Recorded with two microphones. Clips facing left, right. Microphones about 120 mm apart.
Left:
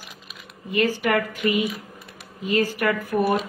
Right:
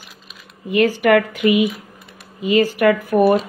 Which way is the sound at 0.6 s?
80° right.